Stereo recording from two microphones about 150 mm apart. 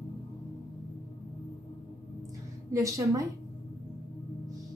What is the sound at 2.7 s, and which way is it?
Speech, 20° right (ahead or behind).